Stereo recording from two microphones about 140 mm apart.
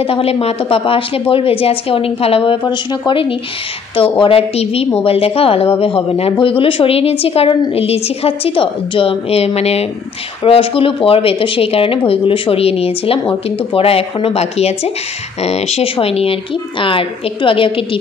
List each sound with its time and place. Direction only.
0.0 s a woman's voice: 45° left (ahead or behind)